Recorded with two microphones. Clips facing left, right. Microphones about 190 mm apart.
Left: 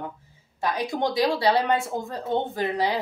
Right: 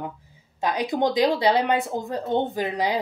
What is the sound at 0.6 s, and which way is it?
A woman's voice, 20° right (ahead or behind).